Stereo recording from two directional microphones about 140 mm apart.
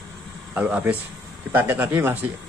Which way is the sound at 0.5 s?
15° right (ahead or behind).